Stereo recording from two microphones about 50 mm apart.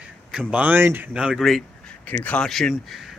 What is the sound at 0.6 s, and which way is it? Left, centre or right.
Speech, right.